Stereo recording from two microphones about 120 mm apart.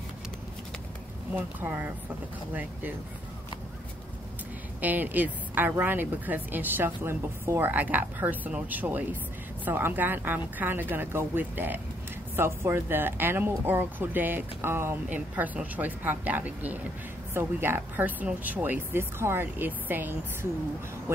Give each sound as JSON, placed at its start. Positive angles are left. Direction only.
{"t": 1.3, "sound": "speech", "side_deg": -15}
{"t": 4.8, "sound": "speech", "side_deg": -15}